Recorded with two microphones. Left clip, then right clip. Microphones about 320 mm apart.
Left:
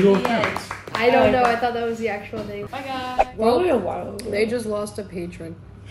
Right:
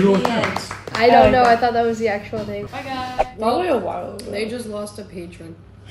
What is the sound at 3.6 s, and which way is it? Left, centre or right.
Speech, centre.